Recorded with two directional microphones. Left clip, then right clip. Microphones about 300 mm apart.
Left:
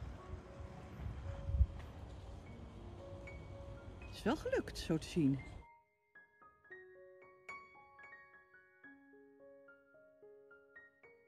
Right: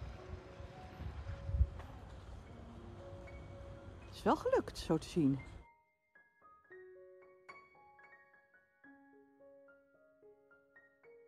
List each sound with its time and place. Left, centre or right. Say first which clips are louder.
1.5 s music: right 1 dB; centre